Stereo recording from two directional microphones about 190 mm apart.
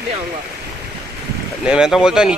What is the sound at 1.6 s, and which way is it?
Speech, 5° right (ahead or behind).